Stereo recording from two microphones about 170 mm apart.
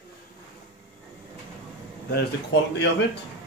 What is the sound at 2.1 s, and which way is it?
Speech, 90° left.